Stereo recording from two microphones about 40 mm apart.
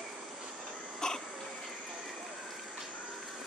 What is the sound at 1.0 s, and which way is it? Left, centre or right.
Throat clearing, centre.